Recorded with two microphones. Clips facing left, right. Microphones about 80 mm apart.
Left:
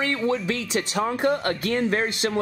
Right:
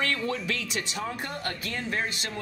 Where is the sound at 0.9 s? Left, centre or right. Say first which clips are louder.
Left 11 dB; left.